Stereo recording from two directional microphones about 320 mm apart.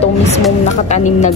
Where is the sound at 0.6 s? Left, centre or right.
Left.